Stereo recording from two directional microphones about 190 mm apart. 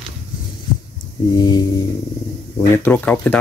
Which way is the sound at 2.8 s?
10° left (ahead or behind).